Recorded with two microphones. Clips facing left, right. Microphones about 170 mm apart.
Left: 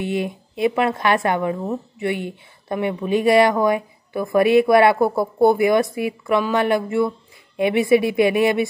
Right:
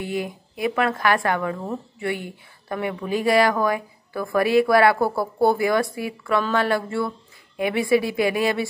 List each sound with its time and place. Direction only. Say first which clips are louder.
0.0 s a woman's voice: left 4 dB; 20° left (ahead or behind)